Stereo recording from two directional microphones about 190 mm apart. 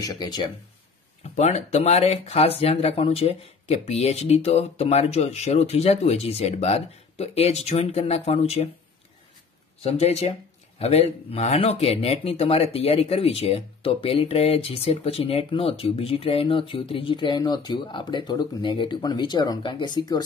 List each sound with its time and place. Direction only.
0.0 s speech: 20° left (ahead or behind)
1.2 s speech: 35° left (ahead or behind)
9.8 s speech: 35° left (ahead or behind)